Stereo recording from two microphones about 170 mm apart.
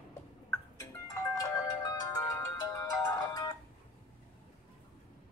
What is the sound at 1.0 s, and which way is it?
Music, 20° left (ahead or behind).